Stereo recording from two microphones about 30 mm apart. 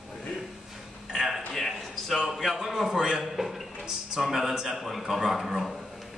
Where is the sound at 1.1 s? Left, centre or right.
Centre.